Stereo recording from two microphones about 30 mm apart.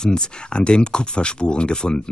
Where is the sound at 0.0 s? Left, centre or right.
Left.